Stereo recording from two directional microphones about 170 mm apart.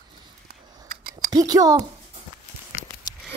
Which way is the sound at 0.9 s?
65° right (ahead or behind).